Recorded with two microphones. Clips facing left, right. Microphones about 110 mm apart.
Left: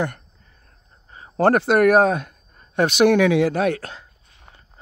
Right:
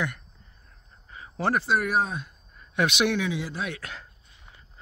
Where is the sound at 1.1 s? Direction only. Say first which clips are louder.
Left 1 dB; 35° left (ahead or behind).